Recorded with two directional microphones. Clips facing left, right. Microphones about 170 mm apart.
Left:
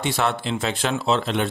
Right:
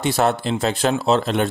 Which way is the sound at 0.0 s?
40° right (ahead or behind).